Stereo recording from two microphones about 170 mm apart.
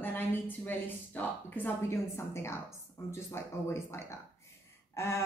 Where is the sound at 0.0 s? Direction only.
10° left (ahead or behind).